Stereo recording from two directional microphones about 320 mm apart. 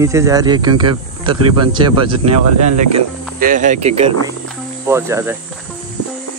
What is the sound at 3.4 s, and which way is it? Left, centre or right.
Speech, right.